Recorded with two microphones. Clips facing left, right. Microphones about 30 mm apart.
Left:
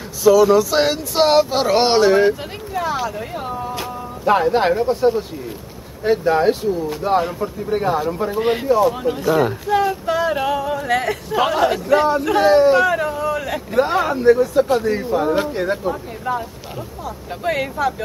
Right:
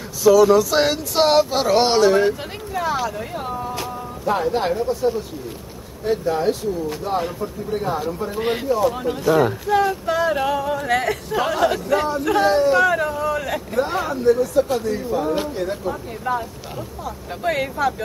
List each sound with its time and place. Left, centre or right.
0.2 s speech: centre
2.7 s speech: centre
4.4 s speech: left
4.8 s speech: left
8.3 s speech: centre
11.3 s speech: centre
13.9 s speech: left
15.9 s speech: centre